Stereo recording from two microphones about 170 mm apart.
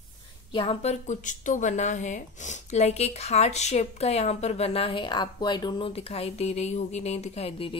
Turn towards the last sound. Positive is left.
turn(degrees=35)  # may be behind; listen again after turning